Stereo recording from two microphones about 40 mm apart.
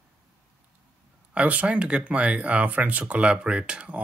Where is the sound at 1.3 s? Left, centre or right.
Right.